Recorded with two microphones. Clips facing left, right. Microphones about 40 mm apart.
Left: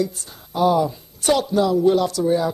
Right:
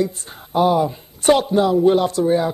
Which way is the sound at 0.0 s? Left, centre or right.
Right.